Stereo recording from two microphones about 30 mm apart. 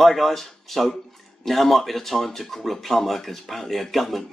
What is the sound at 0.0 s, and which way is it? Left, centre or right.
Speech, centre.